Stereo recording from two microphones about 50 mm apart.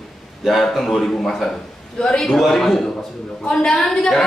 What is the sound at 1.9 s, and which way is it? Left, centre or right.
Speech, centre.